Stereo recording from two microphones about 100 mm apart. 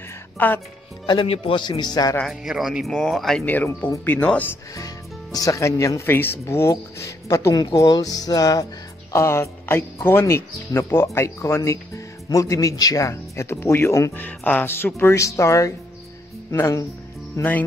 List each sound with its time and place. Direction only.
0.4 s speech: 20° left (ahead or behind)
1.0 s speech: 50° left (ahead or behind)
1.3 s a man's voice: 75° left (ahead or behind)
1.6 s a man's voice: 45° left (ahead or behind)
2.2 s speech: 5° right (ahead or behind)
3.4 s speech: 15° left (ahead or behind)
4.7 s speech: 35° left (ahead or behind)
9.1 s speech: 25° left (ahead or behind)
14.2 s speech: 15° left (ahead or behind)